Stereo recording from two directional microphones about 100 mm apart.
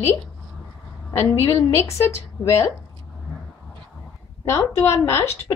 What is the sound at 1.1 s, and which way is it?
A woman's voice, 25° left (ahead or behind).